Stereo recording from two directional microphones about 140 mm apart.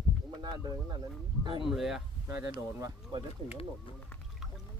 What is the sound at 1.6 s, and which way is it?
Speech, centre (ahead or behind).